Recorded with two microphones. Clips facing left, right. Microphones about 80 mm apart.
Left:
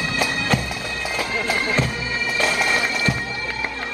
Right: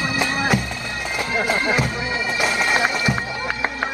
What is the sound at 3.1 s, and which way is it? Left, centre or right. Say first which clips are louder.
Bagpipes: right 2 dB; right.